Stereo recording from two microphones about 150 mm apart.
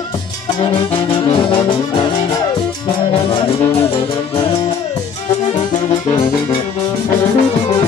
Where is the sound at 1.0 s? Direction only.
35° left (ahead or behind).